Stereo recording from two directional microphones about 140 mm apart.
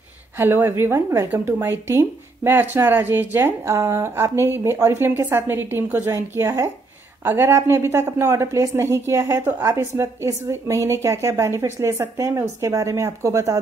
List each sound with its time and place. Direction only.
0.4 s a woman's voice: 15° right (ahead or behind)